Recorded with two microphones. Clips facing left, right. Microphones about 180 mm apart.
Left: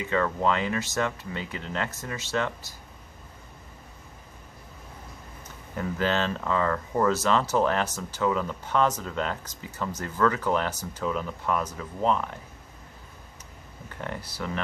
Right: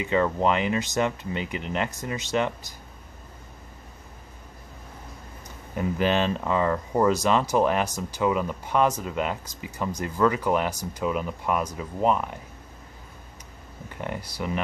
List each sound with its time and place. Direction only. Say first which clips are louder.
0.0 s speech: right 3 dB; 20° right (ahead or behind)
5.8 s speech: right 3 dB; 15° right (ahead or behind)
14.0 s speech: right 3 dB; 15° right (ahead or behind)